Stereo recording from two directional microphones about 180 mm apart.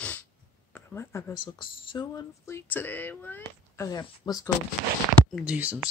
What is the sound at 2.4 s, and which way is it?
Speech, 15° left (ahead or behind).